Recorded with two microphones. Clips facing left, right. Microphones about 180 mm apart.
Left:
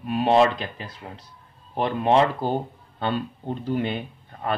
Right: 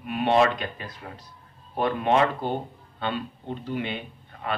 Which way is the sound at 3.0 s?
40° left (ahead or behind).